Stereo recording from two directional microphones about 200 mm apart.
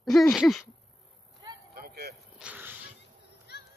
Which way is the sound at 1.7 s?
50° right (ahead or behind).